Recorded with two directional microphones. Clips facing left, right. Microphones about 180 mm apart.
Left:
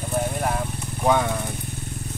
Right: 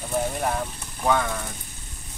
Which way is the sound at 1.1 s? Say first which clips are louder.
Left 3 dB; 15° left (ahead or behind).